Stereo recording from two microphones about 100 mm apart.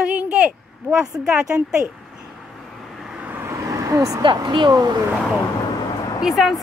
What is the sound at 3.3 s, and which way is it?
Vehicle, 25° right (ahead or behind).